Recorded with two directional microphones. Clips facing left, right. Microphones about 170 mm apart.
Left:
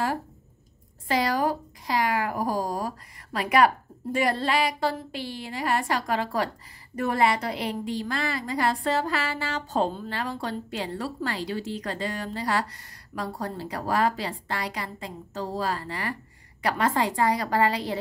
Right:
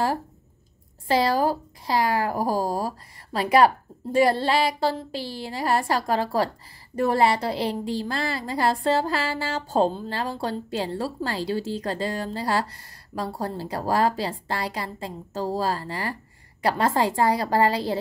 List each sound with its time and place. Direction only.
1.0 s a woman's voice: 30° right (ahead or behind)